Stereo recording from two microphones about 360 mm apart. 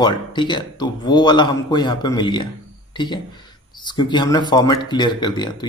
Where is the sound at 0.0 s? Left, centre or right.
Centre.